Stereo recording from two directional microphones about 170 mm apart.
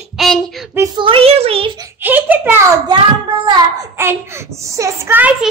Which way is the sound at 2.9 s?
30° right (ahead or behind).